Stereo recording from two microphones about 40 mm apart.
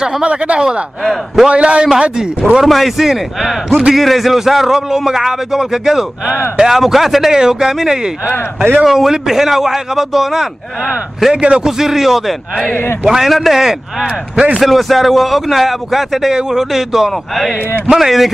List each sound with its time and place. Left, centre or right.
0.2 s speech: right
2.6 s a man's voice: centre
7.3 s a man's voice: centre
11.3 s speech: right
11.8 s a man's voice: centre
13.3 s a man's voice: centre
14.0 s speech: right
14.6 s a man's voice: centre